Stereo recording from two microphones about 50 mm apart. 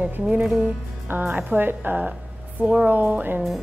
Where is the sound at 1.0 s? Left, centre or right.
Right.